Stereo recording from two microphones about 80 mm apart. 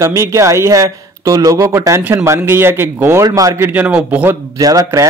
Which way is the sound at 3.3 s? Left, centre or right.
Right.